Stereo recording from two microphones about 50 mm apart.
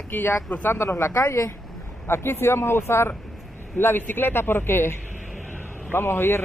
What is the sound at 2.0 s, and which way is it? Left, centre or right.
A man's voice, left.